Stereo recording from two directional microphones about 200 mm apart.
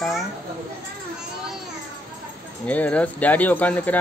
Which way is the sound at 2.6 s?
5° left (ahead or behind).